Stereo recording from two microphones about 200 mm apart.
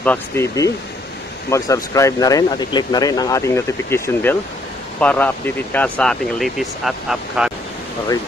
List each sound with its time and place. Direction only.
0.0 s speech: 10° left (ahead or behind)